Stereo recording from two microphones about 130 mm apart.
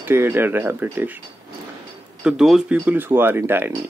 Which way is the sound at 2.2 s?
5° right (ahead or behind).